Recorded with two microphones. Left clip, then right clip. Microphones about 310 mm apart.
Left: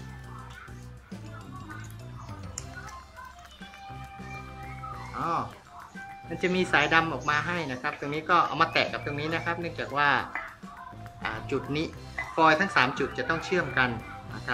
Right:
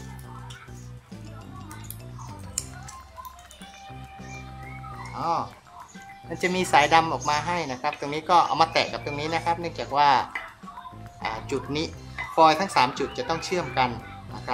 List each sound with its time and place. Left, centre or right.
5.1 s speech: centre
6.4 s speech: centre
11.2 s speech: right
13.1 s speech: right
13.5 s speech: centre